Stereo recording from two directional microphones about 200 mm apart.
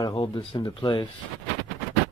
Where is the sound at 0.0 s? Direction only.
25° left (ahead or behind).